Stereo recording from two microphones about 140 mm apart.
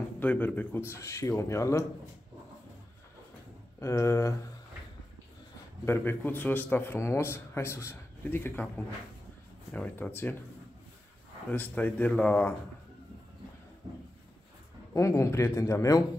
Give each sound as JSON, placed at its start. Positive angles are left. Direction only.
{"t": 0.2, "sound": "a man's voice", "side_deg": 10}
{"t": 3.8, "sound": "a man's voice", "side_deg": 20}
{"t": 5.9, "sound": "a man's voice", "side_deg": 15}
{"t": 11.5, "sound": "a man's voice", "side_deg": 15}
{"t": 15.0, "sound": "a man's voice", "side_deg": 20}